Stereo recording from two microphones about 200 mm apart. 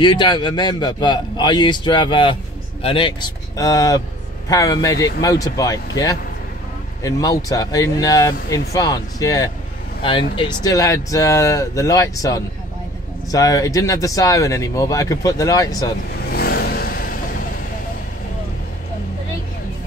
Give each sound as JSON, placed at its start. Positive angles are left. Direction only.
{"t": 0.0, "sound": "a man's voice", "side_deg": 25}
{"t": 16.3, "sound": "vehicle", "side_deg": 50}